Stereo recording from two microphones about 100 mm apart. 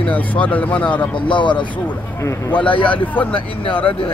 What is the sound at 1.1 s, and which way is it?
Speech, 55° left (ahead or behind).